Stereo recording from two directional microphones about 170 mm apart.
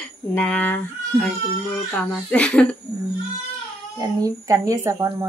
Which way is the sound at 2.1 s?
5° left (ahead or behind).